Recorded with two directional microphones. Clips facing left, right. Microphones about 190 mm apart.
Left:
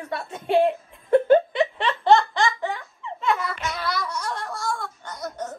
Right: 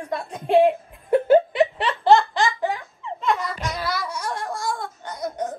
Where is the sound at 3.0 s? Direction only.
Centre (ahead or behind).